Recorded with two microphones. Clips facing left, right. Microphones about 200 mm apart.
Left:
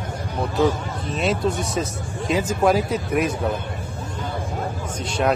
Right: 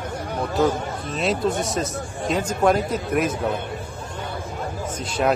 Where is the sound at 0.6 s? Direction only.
Centre (ahead or behind).